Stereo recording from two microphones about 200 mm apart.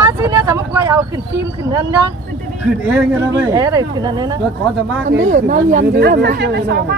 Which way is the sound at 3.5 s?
20° right (ahead or behind).